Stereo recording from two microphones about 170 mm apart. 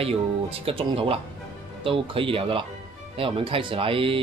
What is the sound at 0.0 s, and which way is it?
Speech, 35° right (ahead or behind).